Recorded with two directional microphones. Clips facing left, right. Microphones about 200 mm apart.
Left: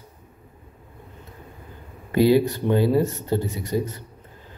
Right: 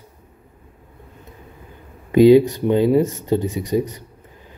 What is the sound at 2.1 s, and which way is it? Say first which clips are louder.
A man's voice: right 7 dB; 20° right (ahead or behind).